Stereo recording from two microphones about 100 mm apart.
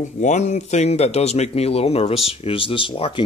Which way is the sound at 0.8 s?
90° left.